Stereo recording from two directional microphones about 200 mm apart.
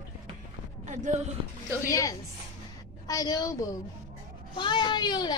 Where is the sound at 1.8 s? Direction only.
15° left (ahead or behind).